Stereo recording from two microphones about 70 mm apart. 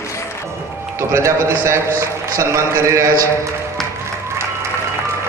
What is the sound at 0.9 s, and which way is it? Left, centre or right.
A man's voice, right.